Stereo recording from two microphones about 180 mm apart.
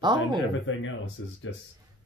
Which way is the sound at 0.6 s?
90° left.